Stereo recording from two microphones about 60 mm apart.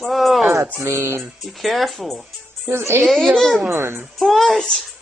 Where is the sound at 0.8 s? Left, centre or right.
Right.